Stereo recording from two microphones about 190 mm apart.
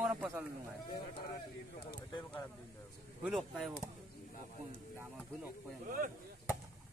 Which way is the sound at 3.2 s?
Centre (ahead or behind).